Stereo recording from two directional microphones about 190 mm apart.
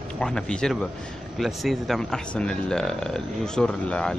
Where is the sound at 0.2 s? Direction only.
5° left (ahead or behind).